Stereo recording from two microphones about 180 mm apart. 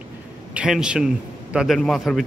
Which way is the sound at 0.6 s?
5° right (ahead or behind).